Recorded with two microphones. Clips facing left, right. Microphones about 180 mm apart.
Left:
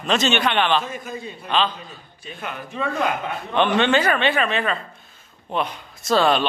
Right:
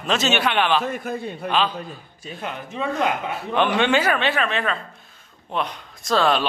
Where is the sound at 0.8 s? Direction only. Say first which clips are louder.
Right 5 dB; 60° right (ahead or behind).